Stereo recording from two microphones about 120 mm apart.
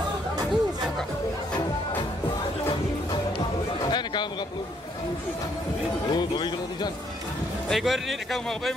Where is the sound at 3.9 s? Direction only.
40° left (ahead or behind).